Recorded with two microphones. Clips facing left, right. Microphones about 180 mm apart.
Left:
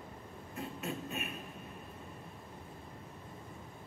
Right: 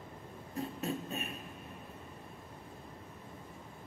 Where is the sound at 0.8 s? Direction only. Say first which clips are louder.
Even; 35° right (ahead or behind).